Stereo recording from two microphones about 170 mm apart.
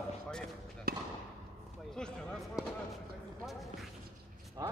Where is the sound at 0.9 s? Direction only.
60° right (ahead or behind).